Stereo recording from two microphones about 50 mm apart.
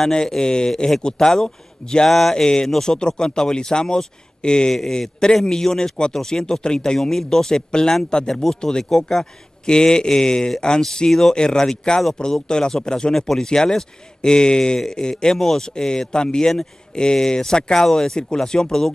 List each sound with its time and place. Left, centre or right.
0.1 s a man's voice: centre